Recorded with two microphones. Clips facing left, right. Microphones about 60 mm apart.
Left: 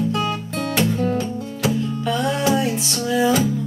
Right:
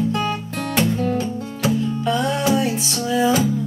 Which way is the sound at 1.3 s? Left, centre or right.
Right.